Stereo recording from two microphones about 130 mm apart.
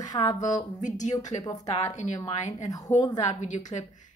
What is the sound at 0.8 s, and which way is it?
Speech, 70° left (ahead or behind).